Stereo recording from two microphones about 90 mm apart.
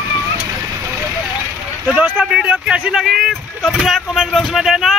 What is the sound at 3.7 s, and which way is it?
Vehicle, centre (ahead or behind).